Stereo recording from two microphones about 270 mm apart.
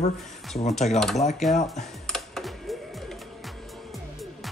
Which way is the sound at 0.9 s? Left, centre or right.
Centre.